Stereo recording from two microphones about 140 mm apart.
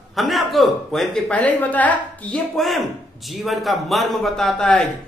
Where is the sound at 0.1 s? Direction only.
Centre (ahead or behind).